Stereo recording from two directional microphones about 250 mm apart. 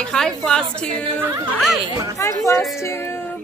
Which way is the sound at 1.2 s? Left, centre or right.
Centre.